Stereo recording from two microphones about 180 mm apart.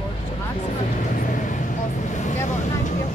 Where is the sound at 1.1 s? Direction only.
45° left (ahead or behind).